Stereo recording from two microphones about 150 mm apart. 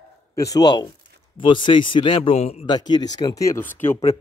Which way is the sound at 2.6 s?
30° left (ahead or behind).